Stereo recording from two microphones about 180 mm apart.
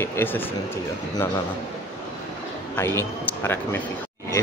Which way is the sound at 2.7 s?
15° left (ahead or behind).